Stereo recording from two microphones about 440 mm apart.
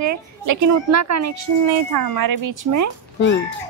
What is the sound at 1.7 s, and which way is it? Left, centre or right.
Speech, right.